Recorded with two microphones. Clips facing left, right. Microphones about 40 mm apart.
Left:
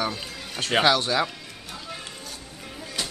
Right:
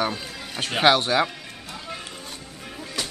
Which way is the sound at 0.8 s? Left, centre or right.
Right.